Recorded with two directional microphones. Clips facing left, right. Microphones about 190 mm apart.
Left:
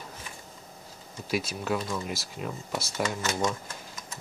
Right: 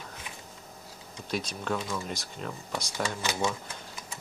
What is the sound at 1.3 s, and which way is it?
Speech, 5° left (ahead or behind).